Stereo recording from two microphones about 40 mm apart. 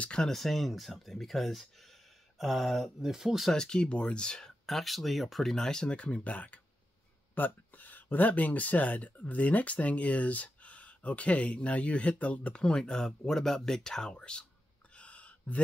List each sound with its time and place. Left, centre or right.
0.2 s speech: centre
3.0 s speech: centre
3.5 s speech: centre
4.6 s speech: centre
5.9 s speech: left
6.3 s speech: left
12.6 s speech: centre
15.0 s a sound: left